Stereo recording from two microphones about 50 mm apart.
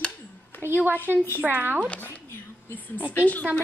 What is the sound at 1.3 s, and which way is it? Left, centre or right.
Speech, right.